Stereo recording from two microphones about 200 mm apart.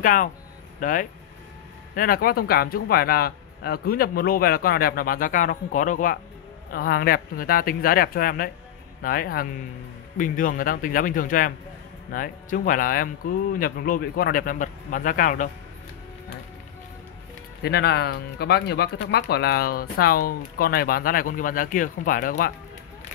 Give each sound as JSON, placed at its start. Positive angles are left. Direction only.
{"t": 0.0, "sound": "speech", "side_deg": 40}
{"t": 17.6, "sound": "speech", "side_deg": 55}